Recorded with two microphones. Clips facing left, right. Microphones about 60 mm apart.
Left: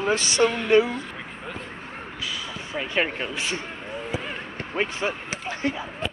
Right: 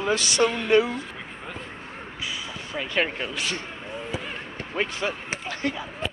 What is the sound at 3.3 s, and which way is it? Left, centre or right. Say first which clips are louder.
Speech: left 1 dB; left.